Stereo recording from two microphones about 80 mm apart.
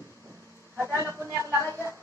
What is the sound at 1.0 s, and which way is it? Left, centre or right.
Speech, right.